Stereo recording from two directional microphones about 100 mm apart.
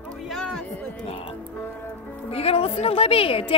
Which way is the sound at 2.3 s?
80° left.